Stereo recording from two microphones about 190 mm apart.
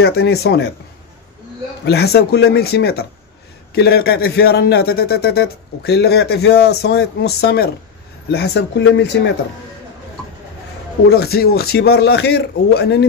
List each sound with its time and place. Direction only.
0.0 s a man's voice: 60° left (ahead or behind)
1.9 s a man's voice: 60° left (ahead or behind)
11.1 s a man's voice: 55° left (ahead or behind)